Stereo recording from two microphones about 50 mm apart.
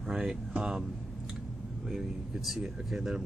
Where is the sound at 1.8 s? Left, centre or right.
Centre.